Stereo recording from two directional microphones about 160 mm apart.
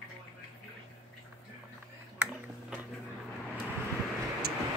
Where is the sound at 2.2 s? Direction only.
5° right (ahead or behind).